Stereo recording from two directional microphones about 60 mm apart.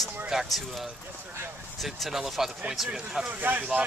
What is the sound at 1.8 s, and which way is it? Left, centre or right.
Speech, centre.